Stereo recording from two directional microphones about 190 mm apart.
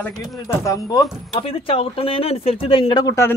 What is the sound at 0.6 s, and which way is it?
Speech, 20° left (ahead or behind).